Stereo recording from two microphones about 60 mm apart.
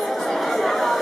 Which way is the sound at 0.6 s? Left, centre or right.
Centre.